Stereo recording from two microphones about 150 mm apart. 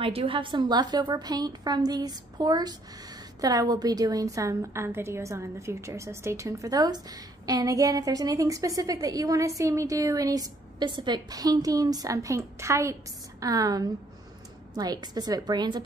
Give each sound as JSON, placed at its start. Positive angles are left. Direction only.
{"t": 0.0, "sound": "a woman's voice", "side_deg": -40}